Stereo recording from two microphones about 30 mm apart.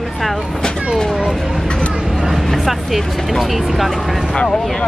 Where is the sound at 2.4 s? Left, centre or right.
Centre.